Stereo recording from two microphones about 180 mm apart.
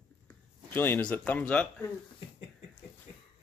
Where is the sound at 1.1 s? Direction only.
10° left (ahead or behind).